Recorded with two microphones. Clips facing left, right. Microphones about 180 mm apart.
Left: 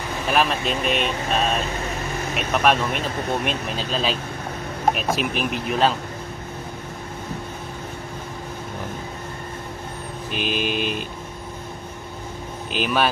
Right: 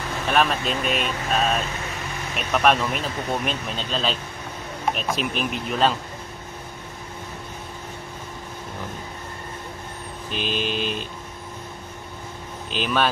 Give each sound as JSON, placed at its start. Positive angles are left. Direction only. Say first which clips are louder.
{"t": 0.3, "sound": "speech", "louder": "even", "side_deg": 0}
{"t": 10.3, "sound": "vehicle", "louder": "left 2 dB", "side_deg": 10}
{"t": 12.7, "sound": "vehicle", "louder": "left 1 dB", "side_deg": 10}